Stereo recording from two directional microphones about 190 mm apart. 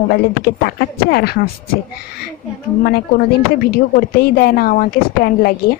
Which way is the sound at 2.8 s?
55° left (ahead or behind).